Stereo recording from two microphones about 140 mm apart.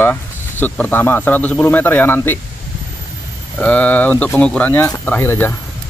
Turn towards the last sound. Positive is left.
turn(degrees=15)  # may be behind; listen again after turning